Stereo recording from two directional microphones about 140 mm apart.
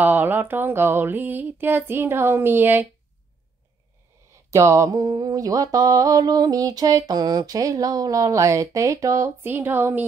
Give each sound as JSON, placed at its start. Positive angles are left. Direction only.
{"t": 0.0, "sound": "speech", "side_deg": -15}
{"t": 4.5, "sound": "mantra", "side_deg": -20}